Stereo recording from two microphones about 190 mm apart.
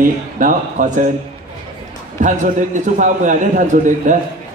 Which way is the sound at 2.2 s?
40° right (ahead or behind).